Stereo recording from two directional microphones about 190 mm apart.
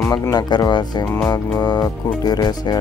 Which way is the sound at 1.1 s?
15° left (ahead or behind).